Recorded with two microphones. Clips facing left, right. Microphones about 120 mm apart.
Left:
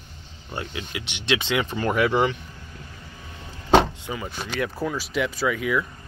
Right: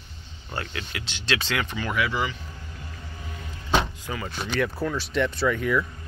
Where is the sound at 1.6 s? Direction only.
45° left (ahead or behind).